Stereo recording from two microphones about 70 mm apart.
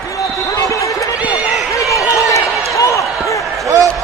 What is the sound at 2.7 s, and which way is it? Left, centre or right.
Basketball bounce, left.